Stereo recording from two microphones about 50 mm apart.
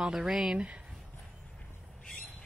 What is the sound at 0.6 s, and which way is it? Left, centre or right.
Speech, right.